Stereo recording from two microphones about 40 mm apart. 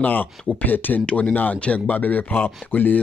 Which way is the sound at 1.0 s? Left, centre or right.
Left.